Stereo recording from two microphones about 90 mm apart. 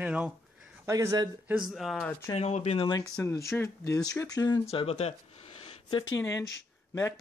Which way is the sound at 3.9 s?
40° left (ahead or behind).